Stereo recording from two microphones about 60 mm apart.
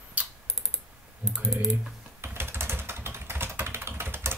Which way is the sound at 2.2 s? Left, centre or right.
Right.